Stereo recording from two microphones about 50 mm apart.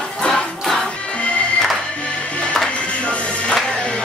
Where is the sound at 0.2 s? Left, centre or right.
Centre.